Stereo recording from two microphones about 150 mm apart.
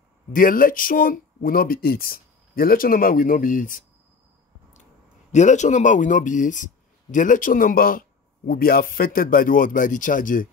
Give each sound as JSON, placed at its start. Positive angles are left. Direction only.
{"t": 0.3, "sound": "speech", "side_deg": 70}
{"t": 5.3, "sound": "speech", "side_deg": 50}